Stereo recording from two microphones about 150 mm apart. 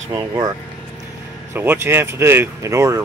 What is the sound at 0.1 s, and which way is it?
Speech, 25° right (ahead or behind).